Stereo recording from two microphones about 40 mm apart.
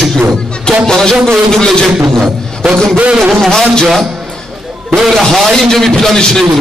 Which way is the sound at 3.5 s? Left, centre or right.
Centre.